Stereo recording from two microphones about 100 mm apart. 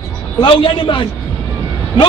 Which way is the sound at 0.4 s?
55° left (ahead or behind).